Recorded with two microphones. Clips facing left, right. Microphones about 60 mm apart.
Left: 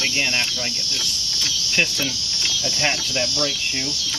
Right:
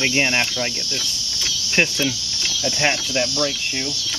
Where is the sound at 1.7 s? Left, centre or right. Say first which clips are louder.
Right 3 dB; right.